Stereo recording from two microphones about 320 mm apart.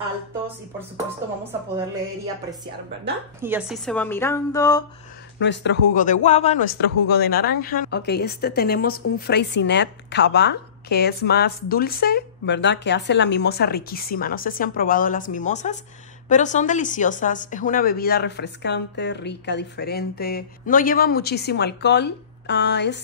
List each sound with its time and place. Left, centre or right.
3.3 s a woman's voice: centre
5.4 s speech: left
5.9 s speech: left